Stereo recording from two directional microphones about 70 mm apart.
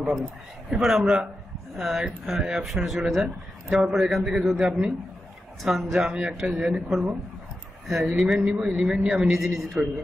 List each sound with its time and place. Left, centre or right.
0.7 s a man's voice: centre
8.4 s a man's voice: centre